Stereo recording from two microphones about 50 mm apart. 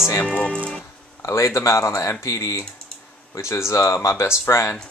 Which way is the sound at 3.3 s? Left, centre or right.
Left.